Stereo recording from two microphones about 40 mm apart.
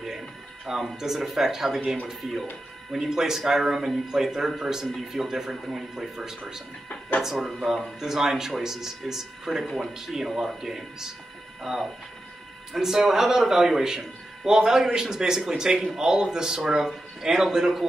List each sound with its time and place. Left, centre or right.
0.7 s speech: centre